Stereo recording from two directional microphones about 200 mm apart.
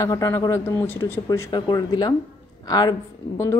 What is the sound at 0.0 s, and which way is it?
A woman's voice, 15° left (ahead or behind).